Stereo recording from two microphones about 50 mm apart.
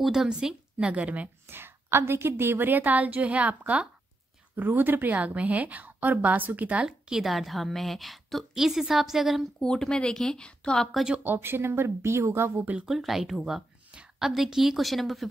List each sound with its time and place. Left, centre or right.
0.0 s a woman's voice: centre; by 1.3 s right
1.5 s a woman's voice: right
4.6 s a woman's voice: right
5.1 s a woman's voice: right
6.9 s a woman's voice: centre
9.6 s speech: centre
11.2 s speech: right
12.8 s a woman's voice: centre